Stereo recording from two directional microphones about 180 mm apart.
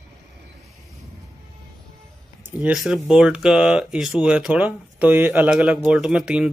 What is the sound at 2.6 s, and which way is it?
Speech, 5° right (ahead or behind).